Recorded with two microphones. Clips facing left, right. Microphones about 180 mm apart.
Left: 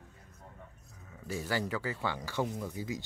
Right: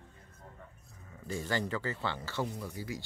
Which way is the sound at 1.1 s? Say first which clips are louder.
Even; 5° left (ahead or behind).